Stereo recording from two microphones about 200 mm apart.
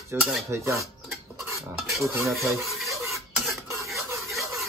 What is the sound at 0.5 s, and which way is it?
Speech, 15° right (ahead or behind).